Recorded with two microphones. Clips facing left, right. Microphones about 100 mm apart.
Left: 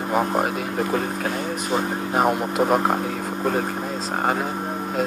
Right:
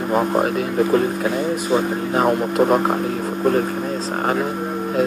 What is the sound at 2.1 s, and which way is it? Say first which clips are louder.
Speech: right 3 dB; 5° left (ahead or behind).